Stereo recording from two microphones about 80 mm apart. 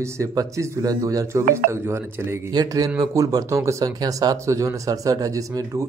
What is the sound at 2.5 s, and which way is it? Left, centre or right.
Speech, right.